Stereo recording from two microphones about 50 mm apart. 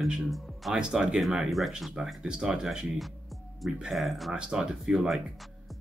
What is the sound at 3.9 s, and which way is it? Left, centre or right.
Speech, centre.